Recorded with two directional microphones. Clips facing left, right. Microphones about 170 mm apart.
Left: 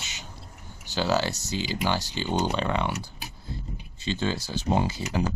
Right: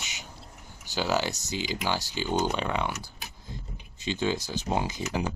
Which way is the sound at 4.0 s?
10° right (ahead or behind).